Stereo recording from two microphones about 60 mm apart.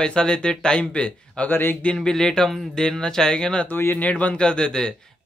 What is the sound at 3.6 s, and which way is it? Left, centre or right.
Speech, left.